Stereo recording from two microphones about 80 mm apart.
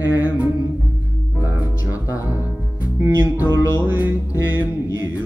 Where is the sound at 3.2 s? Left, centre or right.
Left.